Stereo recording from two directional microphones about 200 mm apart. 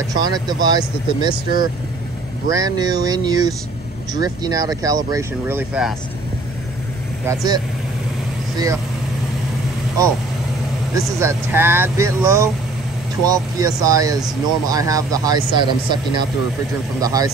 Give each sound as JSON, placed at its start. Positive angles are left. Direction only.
{"t": 0.1, "sound": "speech", "side_deg": -20}
{"t": 7.2, "sound": "speech", "side_deg": -20}
{"t": 11.0, "sound": "speech", "side_deg": -15}